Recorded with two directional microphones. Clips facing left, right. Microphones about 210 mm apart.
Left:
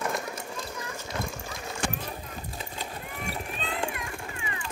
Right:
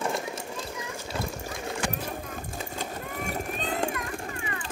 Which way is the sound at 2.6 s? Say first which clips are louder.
Right 4 dB; 45° right (ahead or behind).